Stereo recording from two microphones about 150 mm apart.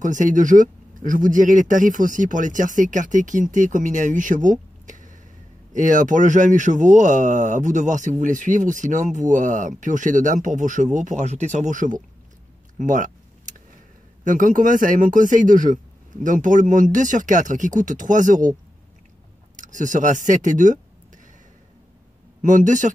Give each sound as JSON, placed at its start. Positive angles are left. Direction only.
{"t": 0.0, "sound": "speech", "side_deg": -60}
{"t": 12.7, "sound": "keys jangling", "side_deg": -60}
{"t": 14.2, "sound": "speech", "side_deg": -60}
{"t": 19.5, "sound": "speech", "side_deg": -60}
{"t": 22.4, "sound": "speech", "side_deg": -60}